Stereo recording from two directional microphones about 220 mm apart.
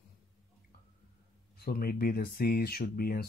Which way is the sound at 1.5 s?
45° left (ahead or behind).